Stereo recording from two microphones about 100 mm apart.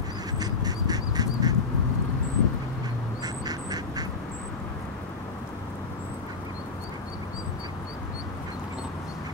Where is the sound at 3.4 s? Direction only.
40° right (ahead or behind).